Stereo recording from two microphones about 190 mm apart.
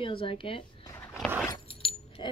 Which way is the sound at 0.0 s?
30° left (ahead or behind).